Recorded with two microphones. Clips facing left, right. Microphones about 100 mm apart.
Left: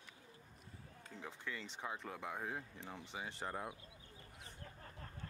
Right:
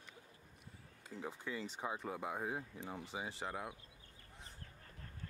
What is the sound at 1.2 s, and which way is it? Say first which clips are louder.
Speech: right 4 dB; 15° right (ahead or behind).